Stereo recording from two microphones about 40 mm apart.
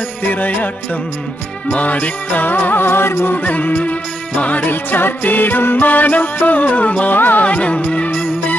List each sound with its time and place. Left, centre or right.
0.3 s music: left
1.7 s music: left
3.4 s music: left
5.2 s music: left
7.1 s music: left
7.4 s music: left